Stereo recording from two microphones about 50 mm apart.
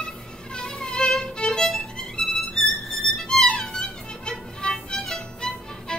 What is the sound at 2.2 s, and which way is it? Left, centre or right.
Music, centre.